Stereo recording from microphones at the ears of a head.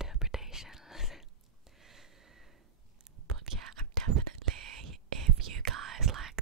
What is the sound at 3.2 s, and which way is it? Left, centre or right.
Whispering, right.